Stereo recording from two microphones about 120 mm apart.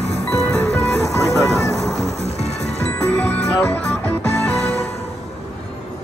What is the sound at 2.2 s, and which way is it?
Music, 65° left (ahead or behind).